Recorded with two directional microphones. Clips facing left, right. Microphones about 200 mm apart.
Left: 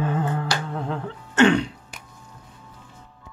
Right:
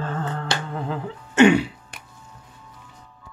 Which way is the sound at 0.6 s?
Centre (ahead or behind).